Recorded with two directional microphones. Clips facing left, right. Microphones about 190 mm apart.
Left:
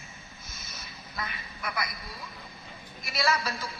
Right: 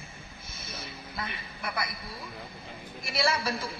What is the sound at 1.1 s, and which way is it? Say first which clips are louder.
Speech: left 1 dB; 30° right (ahead or behind).